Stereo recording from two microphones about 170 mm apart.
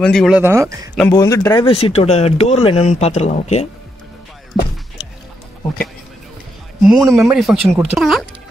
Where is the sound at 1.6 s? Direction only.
35° left (ahead or behind).